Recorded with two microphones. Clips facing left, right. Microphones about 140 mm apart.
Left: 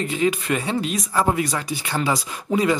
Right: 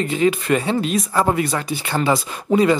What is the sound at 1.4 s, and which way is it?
Speech, 55° right (ahead or behind).